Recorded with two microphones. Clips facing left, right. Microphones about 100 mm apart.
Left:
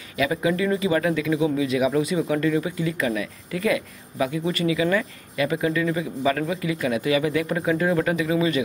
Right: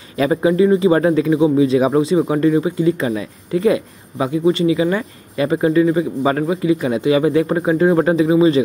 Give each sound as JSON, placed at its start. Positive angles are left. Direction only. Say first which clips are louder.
{"t": 0.2, "sound": "speech", "louder": "right 8 dB", "side_deg": -35}